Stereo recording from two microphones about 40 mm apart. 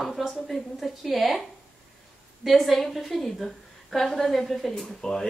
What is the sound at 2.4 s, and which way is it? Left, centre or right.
A woman's voice, centre.